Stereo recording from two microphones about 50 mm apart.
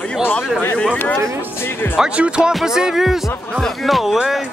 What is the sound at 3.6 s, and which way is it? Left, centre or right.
Speech, centre.